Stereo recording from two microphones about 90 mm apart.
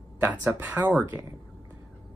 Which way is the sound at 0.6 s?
20° right (ahead or behind).